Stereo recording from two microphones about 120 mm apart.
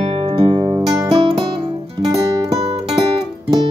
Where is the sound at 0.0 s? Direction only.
40° right (ahead or behind).